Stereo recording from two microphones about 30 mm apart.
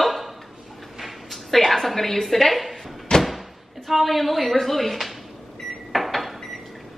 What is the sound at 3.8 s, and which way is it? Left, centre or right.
A woman's voice, centre.